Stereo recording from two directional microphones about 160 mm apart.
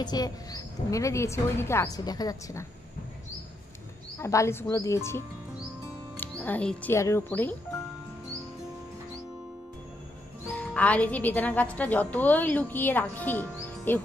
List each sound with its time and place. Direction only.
0.0 s speech: 25° left (ahead or behind)
4.2 s a woman's voice: 20° left (ahead or behind)
10.4 s a woman's voice: 10° left (ahead or behind)